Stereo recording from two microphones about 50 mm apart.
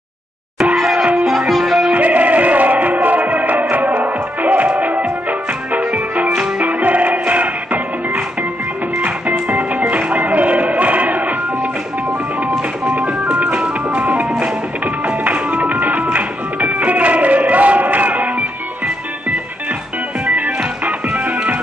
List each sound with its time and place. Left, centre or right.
0.7 s music: centre
2.0 s music: right
12.9 s music: right
20.2 s music: right